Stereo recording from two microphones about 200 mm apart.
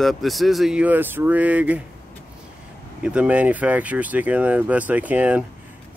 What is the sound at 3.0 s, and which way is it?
Speech, 5° right (ahead or behind).